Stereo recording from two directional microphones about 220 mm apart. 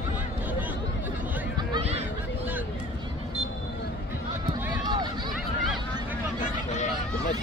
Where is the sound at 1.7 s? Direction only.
30° right (ahead or behind).